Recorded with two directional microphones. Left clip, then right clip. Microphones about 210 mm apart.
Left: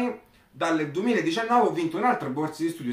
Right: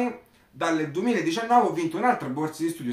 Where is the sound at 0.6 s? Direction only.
5° left (ahead or behind).